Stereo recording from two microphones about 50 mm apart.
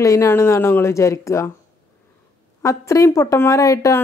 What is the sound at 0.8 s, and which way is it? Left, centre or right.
Speech, left.